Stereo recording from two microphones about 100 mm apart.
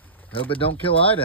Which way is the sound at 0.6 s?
65° left (ahead or behind).